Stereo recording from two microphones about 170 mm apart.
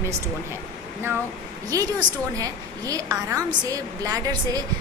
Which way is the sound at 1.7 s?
20° right (ahead or behind).